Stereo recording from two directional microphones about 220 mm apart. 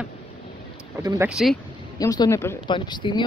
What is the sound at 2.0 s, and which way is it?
Speech, 15° left (ahead or behind).